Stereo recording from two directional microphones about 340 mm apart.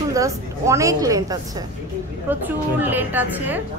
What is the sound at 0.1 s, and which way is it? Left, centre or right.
A woman's voice, centre.